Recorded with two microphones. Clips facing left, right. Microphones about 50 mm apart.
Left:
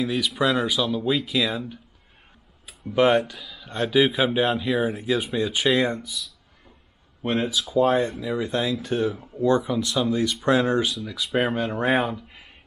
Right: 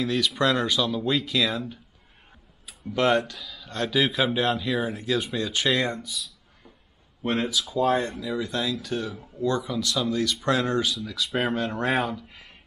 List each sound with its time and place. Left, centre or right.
0.0 s speech: centre
2.9 s speech: centre
7.2 s speech: centre